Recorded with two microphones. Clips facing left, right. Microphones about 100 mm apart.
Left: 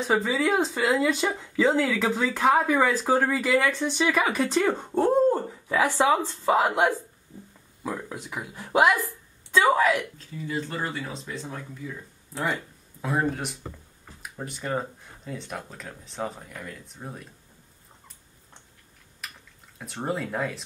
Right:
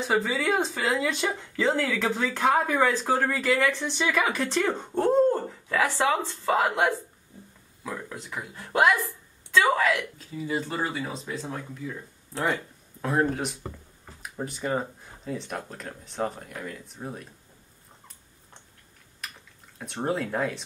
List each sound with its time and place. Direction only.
0.0 s speech: centre (ahead or behind); by 9.9 s 15° left (ahead or behind)
10.1 s speech: 10° right (ahead or behind)
19.2 s a sound: centre (ahead or behind)
20.1 s speech: centre (ahead or behind)